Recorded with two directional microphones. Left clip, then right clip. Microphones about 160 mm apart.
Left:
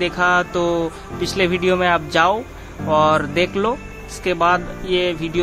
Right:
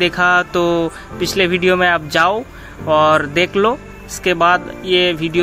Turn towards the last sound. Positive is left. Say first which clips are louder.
# right 5 dB
turn(degrees=-15)  # may be behind; listen again after turning